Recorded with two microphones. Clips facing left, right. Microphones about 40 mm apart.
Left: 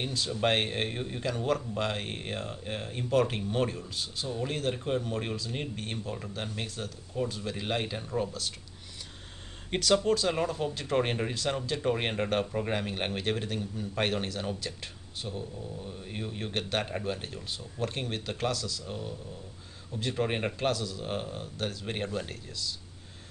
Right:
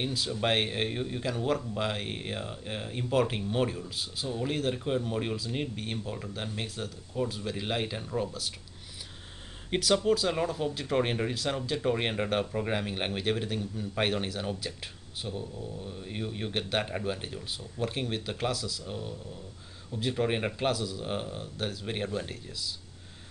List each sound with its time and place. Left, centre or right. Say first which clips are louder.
0.0 s speech: left 1 dB; centre
9.7 s speech: even; centre